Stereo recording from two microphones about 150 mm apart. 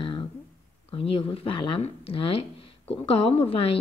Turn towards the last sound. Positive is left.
turn(degrees=40)  # may be behind; listen again after turning